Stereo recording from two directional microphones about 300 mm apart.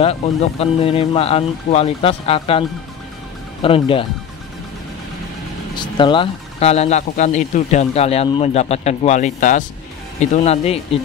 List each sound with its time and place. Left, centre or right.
0.0 s speech: centre
3.6 s speech: centre
5.8 s speech: centre